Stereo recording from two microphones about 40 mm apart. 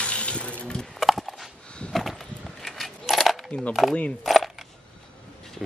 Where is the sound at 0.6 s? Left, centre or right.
Left.